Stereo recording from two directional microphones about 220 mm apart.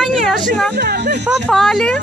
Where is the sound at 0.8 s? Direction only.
45° right (ahead or behind).